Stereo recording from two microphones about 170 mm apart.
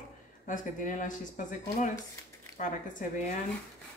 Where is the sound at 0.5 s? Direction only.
50° left (ahead or behind).